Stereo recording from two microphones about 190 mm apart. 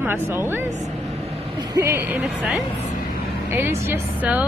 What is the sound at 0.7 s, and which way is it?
Speech, 40° right (ahead or behind).